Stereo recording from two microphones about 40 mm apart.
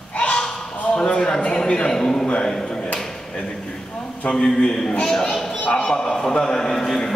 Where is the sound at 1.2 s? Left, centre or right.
Left.